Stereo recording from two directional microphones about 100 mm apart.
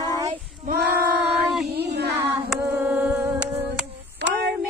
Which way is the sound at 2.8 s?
15° right (ahead or behind).